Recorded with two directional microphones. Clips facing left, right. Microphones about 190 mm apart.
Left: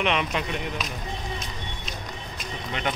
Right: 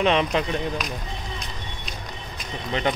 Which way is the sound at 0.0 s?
35° right (ahead or behind).